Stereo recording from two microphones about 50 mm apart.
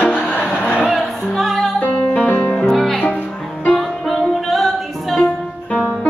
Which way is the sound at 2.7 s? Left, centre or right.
Centre.